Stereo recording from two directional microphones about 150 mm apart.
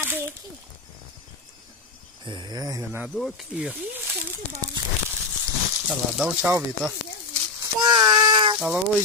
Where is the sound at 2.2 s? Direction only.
30° right (ahead or behind).